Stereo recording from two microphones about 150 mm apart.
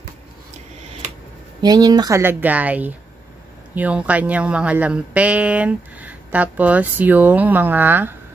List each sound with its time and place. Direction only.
1.6 s speech: 25° right (ahead or behind)